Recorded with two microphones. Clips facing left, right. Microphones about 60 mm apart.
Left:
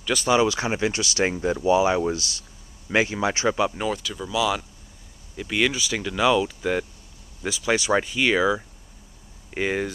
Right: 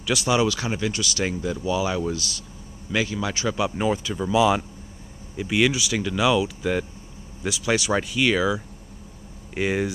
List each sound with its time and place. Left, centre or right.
0.0 s speech: centre
0.5 s speech: left
3.9 s speech: centre
5.3 s speech: centre